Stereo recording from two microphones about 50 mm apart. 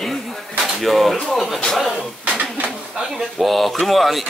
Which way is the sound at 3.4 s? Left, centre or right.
Centre.